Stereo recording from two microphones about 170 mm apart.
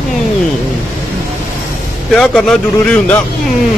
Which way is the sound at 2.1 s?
5° left (ahead or behind).